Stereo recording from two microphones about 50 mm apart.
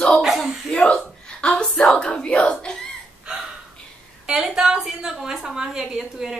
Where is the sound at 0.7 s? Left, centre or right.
Left.